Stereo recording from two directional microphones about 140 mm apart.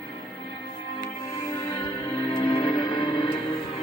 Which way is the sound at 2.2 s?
45° left (ahead or behind).